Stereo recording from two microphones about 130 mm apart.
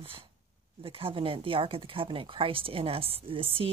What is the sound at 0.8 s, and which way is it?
Speech, 45° right (ahead or behind).